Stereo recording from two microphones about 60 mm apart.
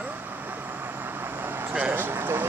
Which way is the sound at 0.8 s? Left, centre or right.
Right.